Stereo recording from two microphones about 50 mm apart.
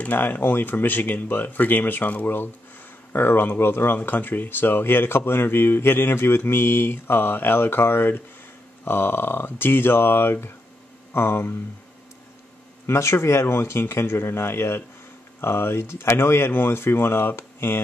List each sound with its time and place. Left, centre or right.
0.0 s speech: left
12.8 s speech: left